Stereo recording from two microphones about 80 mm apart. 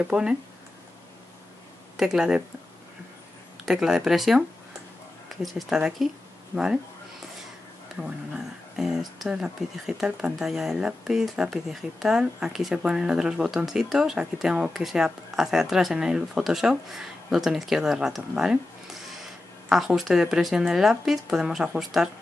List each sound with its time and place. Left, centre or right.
0.0 s speech: centre
2.0 s speech: centre
3.6 s speech: centre
8.0 s speech: centre